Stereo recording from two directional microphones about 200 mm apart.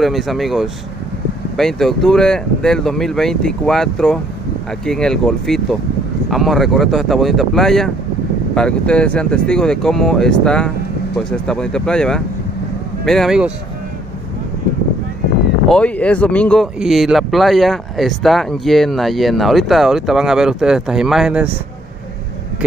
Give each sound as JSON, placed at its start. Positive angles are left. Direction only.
{"t": 0.0, "sound": "speech", "side_deg": 0}
{"t": 15.7, "sound": "speech", "side_deg": 5}